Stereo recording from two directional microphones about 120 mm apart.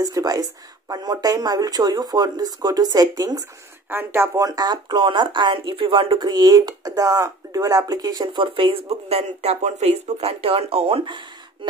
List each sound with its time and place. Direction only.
0.0 s speech: 30° right (ahead or behind)
3.9 s speech: 20° right (ahead or behind)
4.5 s speech: 35° right (ahead or behind)